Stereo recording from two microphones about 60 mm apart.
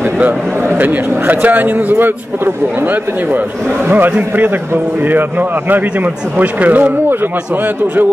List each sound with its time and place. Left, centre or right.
0.0 s a man's voice: right